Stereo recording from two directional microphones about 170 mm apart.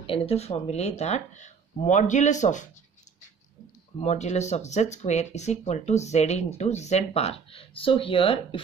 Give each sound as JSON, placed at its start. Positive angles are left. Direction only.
{"t": 0.0, "sound": "speech", "side_deg": 35}
{"t": 4.0, "sound": "speech", "side_deg": 40}